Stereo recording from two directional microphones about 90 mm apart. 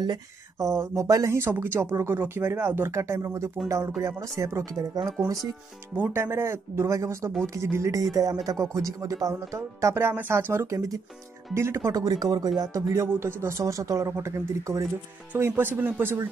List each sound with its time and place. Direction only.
0.0 s speech: 50° right (ahead or behind)
0.7 s speech: 35° right (ahead or behind)
8.0 s speech: 40° right (ahead or behind); by 16.2 s 25° right (ahead or behind)